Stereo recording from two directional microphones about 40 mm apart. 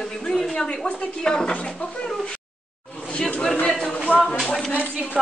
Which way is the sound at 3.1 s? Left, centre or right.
Left.